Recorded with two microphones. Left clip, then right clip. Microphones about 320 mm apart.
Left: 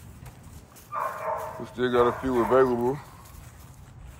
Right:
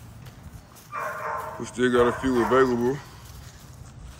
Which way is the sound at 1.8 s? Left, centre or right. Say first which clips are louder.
Right 2 dB; centre.